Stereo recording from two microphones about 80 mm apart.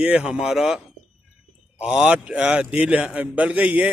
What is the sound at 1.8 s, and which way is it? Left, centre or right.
A man's voice, centre.